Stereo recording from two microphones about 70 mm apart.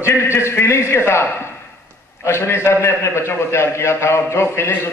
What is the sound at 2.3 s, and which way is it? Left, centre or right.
A man's voice, left.